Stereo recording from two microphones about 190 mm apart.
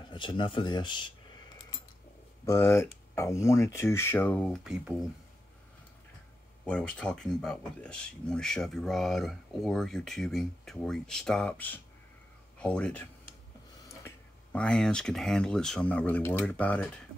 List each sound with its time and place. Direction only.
0.1 s speech: 25° left (ahead or behind)
2.4 s speech: 15° left (ahead or behind)
6.6 s speech: 5° left (ahead or behind)